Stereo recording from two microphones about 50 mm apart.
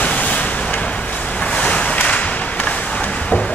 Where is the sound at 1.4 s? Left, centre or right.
Left.